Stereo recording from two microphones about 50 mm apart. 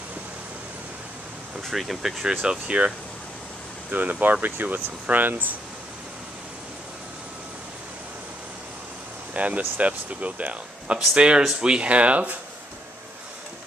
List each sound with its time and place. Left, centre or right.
1.7 s speech: centre
2.4 s speech: centre
3.9 s speech: right
9.3 s speech: right